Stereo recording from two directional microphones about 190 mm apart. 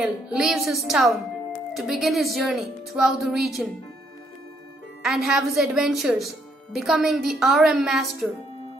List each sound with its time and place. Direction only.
0.0 s a woman's voice: 5° right (ahead or behind)
5.0 s a woman's voice: centre (ahead or behind)